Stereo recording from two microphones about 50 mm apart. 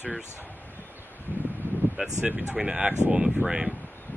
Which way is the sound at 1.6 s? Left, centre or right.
Right.